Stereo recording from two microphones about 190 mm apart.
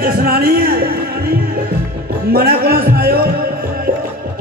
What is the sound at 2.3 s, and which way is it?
A man's voice, 55° right (ahead or behind).